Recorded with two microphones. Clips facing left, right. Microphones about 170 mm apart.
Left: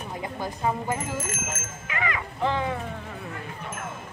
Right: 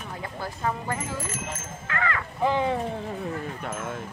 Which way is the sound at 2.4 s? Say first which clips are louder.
Right 3 dB; 20° right (ahead or behind).